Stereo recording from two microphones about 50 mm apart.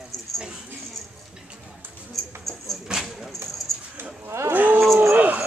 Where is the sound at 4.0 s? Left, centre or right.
Right.